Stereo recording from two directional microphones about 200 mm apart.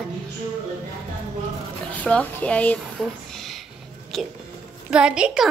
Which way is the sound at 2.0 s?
5° left (ahead or behind).